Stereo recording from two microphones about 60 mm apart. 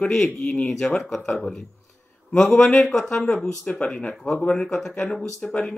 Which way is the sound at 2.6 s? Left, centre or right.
Left.